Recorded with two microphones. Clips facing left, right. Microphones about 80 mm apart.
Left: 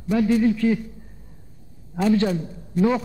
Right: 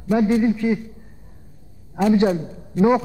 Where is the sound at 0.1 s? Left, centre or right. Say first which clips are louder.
Right 1 dB; right.